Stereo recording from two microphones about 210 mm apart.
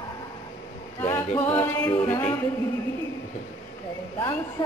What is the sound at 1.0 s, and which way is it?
A capella, 10° left (ahead or behind).